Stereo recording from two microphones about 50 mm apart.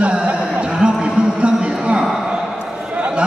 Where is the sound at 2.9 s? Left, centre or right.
Right.